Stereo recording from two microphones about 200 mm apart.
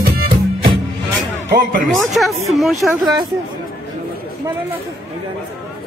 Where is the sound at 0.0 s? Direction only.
50° right (ahead or behind).